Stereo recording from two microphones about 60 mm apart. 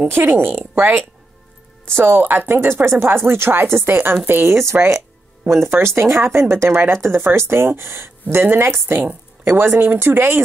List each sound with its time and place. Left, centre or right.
0.1 s a woman's voice: right